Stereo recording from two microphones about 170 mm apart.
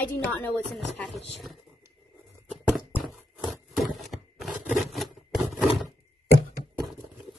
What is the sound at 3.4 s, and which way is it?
Scrape, centre (ahead or behind).